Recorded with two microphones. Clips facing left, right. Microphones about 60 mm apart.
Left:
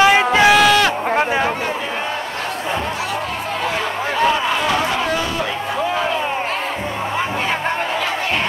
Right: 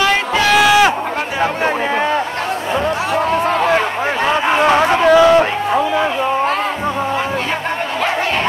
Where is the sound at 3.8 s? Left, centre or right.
Right.